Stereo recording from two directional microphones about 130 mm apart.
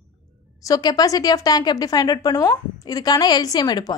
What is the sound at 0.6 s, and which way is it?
A woman's voice, 30° left (ahead or behind).